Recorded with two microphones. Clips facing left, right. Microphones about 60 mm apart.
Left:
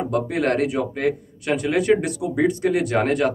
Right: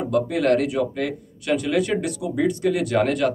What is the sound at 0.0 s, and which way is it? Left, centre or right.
Speech, left.